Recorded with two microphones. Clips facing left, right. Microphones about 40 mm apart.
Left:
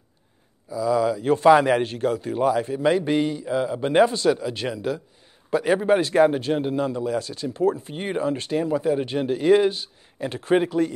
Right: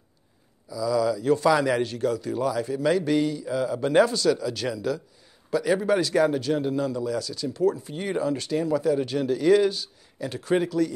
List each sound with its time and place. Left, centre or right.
0.7 s a man's voice: left